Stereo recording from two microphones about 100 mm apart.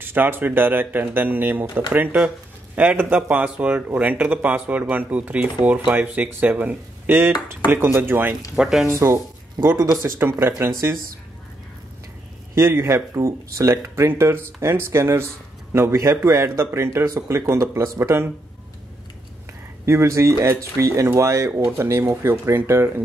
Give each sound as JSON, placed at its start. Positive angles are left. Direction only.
{"t": 0.0, "sound": "speech", "side_deg": -20}
{"t": 8.5, "sound": "speech", "side_deg": -5}
{"t": 8.8, "sound": "speech", "side_deg": -30}
{"t": 12.5, "sound": "speech", "side_deg": -25}
{"t": 19.9, "sound": "speech", "side_deg": -30}